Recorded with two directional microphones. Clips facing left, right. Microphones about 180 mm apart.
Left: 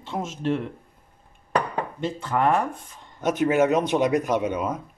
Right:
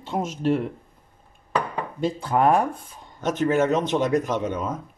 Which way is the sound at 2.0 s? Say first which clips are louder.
Right 4 dB; 35° right (ahead or behind).